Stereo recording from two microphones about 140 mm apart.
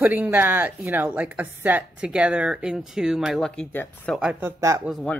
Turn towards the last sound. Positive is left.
turn(degrees=5)  # may be behind; listen again after turning